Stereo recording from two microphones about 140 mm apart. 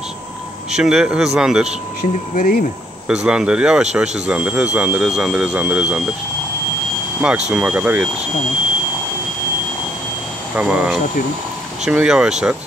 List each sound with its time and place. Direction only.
0.7 s speech: 5° right (ahead or behind)
2.3 s speech: 90° left
3.1 s speech: 5° right (ahead or behind)
7.2 s speech: 5° right (ahead or behind)
10.5 s speech: 10° right (ahead or behind)